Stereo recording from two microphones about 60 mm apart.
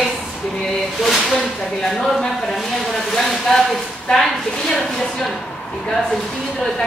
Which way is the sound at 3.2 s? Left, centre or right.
Centre.